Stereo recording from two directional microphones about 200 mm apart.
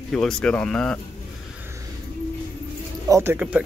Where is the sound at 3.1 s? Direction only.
15° right (ahead or behind).